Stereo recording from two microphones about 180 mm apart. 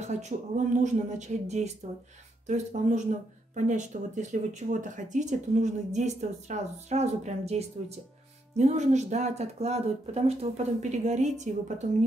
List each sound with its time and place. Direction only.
0.0 s speech: 40° right (ahead or behind)